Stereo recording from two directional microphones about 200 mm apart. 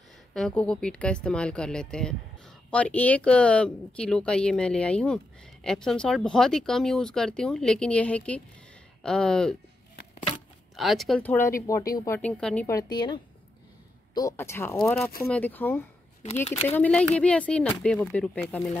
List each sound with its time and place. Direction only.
0.3 s speech: 5° left (ahead or behind)
10.8 s speech: centre (ahead or behind); by 12.2 s 15° left (ahead or behind)
12.2 s speech: 5° left (ahead or behind)
12.6 s a woman's voice: 20° left (ahead or behind)